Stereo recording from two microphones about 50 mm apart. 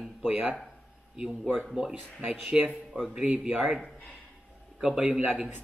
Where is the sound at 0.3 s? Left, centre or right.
Right.